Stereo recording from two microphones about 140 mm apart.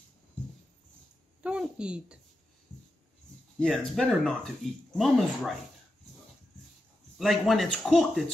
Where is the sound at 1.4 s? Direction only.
5° right (ahead or behind).